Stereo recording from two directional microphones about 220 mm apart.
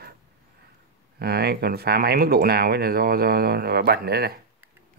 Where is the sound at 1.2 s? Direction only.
45° right (ahead or behind).